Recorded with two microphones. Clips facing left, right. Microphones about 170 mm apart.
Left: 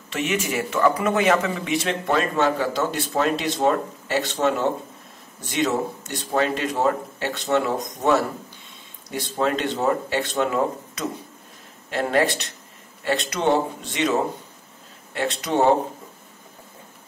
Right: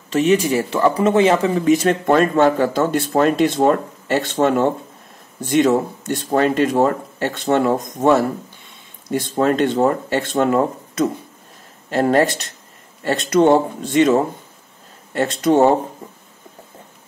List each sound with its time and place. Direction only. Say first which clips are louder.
0.1 s speech: right 9 dB; 35° right (ahead or behind)